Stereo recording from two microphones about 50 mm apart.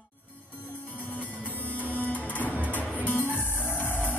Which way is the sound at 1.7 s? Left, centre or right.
Left.